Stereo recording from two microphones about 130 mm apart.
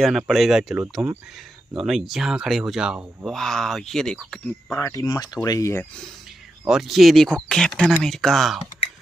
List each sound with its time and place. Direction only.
0.0 s speech: centre (ahead or behind)
3.3 s speech: 5° left (ahead or behind)
4.8 s speech: 30° left (ahead or behind)
6.6 s speech: centre (ahead or behind)